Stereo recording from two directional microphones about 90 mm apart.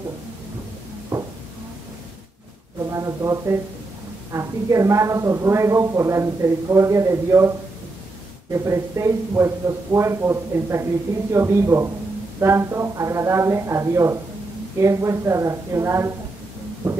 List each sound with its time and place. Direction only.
2.9 s a woman's voice: 35° right (ahead or behind)
16.8 s music: 30° right (ahead or behind)